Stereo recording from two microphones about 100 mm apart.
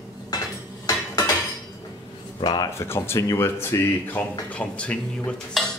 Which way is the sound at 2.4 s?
45° left (ahead or behind).